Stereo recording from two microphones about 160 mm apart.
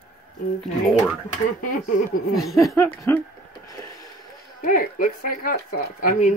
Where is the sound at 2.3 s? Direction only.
Centre (ahead or behind).